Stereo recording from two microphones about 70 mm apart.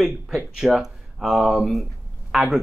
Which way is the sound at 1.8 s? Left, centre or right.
Centre.